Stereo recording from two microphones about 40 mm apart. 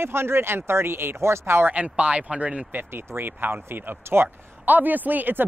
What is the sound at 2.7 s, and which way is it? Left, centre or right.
Speech, right.